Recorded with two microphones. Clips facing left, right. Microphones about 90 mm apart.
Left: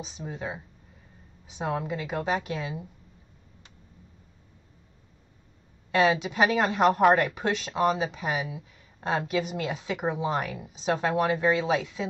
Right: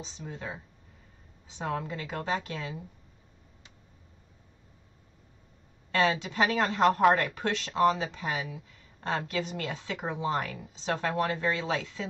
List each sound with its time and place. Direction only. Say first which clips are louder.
0.3 s speech: left 4 dB; 15° left (ahead or behind)
5.9 s speech: left 4 dB; 15° left (ahead or behind)